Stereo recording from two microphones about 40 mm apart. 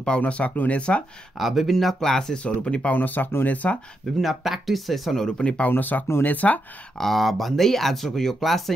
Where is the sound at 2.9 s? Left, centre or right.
Left.